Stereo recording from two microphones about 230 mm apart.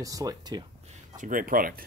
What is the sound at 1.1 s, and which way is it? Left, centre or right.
Speech, right.